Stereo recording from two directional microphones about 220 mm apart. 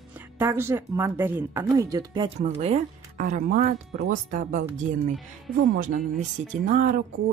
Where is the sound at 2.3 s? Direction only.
30° right (ahead or behind).